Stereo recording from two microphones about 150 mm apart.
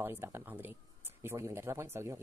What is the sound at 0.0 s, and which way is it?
Speech, 15° right (ahead or behind).